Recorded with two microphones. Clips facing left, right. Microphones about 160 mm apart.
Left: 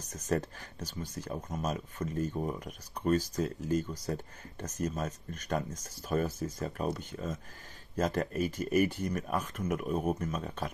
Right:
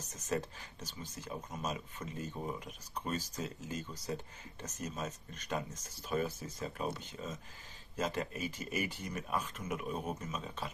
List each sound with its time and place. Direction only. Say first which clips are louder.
0.1 s speech: left 5 dB; 55° left (ahead or behind)